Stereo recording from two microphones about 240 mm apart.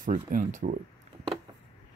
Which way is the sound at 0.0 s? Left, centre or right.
Right.